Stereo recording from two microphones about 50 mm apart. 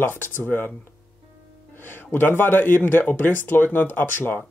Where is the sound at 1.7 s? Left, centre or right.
Left.